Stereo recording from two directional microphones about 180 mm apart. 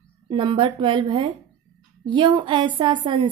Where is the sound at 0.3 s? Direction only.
25° right (ahead or behind).